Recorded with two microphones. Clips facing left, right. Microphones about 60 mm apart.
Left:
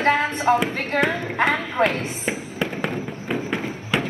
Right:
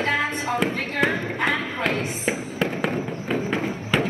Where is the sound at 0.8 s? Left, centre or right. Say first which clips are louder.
Left 1 dB; left.